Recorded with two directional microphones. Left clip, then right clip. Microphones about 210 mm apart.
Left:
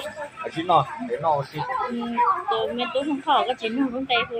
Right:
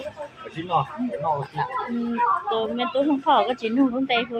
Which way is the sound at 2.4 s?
15° right (ahead or behind).